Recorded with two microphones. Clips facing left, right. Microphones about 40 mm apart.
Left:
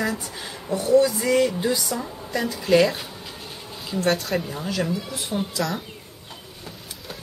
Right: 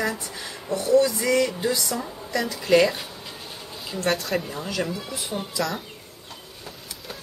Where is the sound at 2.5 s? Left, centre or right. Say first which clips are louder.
Even; centre.